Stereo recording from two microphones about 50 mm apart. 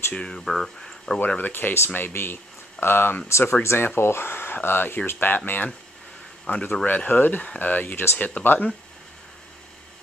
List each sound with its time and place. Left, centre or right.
0.1 s speech: centre
1.2 s speech: left
3.3 s speech: left
3.6 s speech: left
7.1 s speech: left